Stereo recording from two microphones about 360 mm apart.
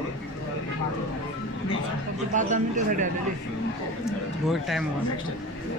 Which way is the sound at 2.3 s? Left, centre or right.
Right.